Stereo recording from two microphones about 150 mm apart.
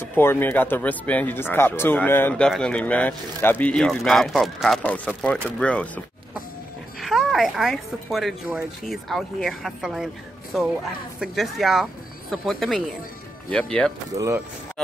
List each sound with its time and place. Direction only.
0.1 s a woman's voice: 15° left (ahead or behind)
7.0 s a woman's voice: centre (ahead or behind)
14.1 s speech: 20° right (ahead or behind)